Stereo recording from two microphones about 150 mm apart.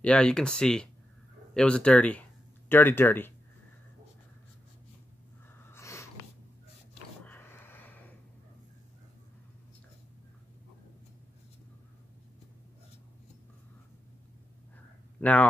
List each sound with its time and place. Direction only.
0.0 s speech: 5° left (ahead or behind)
5.7 s wheeze: 20° left (ahead or behind)
7.2 s a sound: 15° left (ahead or behind)
15.1 s speech: 10° left (ahead or behind)